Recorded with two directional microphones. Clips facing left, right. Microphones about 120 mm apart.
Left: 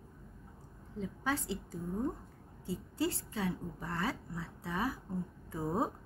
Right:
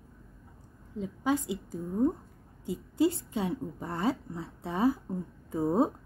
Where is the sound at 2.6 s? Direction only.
20° right (ahead or behind).